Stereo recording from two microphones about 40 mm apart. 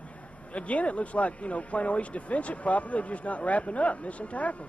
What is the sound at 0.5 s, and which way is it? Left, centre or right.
Speech, left.